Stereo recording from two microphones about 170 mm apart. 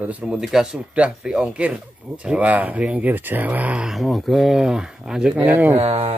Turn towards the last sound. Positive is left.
turn(degrees=-35)  # may be behind; listen again after turning